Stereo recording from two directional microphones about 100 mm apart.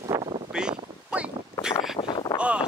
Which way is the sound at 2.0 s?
45° left (ahead or behind).